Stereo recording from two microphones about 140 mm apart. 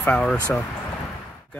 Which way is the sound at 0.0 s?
10° left (ahead or behind).